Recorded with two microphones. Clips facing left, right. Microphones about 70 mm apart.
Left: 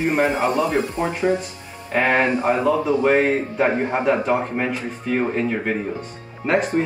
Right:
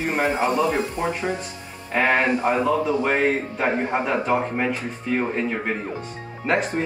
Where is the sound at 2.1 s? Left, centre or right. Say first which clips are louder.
Left 1 dB; centre.